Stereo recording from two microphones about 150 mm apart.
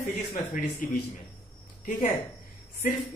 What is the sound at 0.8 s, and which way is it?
Speech, 70° left (ahead or behind).